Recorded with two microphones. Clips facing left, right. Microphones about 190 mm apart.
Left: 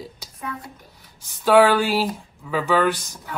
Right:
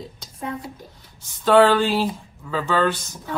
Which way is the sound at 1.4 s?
10° left (ahead or behind).